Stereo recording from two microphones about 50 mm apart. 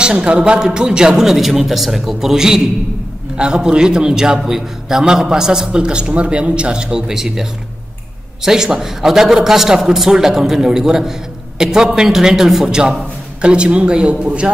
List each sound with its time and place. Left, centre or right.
0.0 s a man's voice: centre